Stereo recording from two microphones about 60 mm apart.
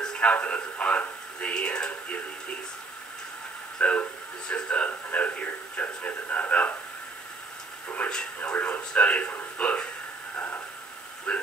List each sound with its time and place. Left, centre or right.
0.0 s radio: centre
0.3 s speech: left
3.7 s speech: left
8.0 s speech: centre
10.3 s a sound: left
11.3 s speech: centre